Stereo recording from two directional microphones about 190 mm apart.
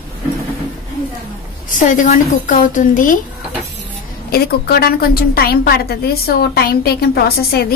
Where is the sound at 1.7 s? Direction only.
40° left (ahead or behind).